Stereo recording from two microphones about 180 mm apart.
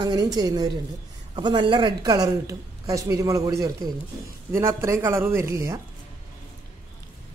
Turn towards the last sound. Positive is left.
turn(degrees=-15)  # may be behind; listen again after turning